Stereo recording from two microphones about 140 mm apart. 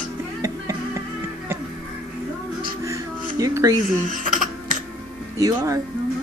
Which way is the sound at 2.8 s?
25° right (ahead or behind).